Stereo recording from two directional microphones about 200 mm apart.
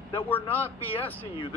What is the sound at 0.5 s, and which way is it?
Speech, 10° left (ahead or behind).